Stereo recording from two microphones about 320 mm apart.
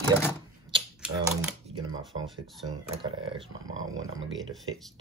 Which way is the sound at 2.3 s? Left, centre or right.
Centre.